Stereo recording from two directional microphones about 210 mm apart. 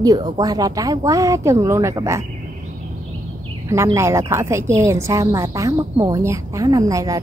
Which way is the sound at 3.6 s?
15° right (ahead or behind).